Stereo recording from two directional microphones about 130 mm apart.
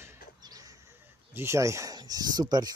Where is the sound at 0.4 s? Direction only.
30° right (ahead or behind).